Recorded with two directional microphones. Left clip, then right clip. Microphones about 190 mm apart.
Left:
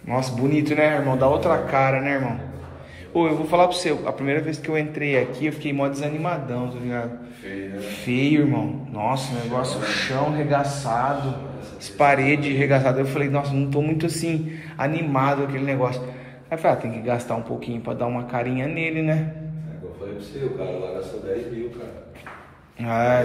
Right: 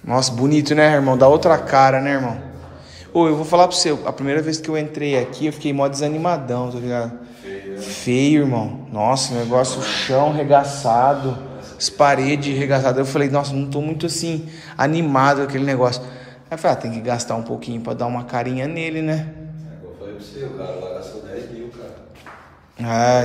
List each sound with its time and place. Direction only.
0.0 s a man's voice: 30° right (ahead or behind)
12.0 s a woman's voice: 20° right (ahead or behind)
14.8 s a man's voice: 35° right (ahead or behind)
16.4 s a woman's voice: 15° right (ahead or behind)
22.8 s a woman's voice: 25° right (ahead or behind)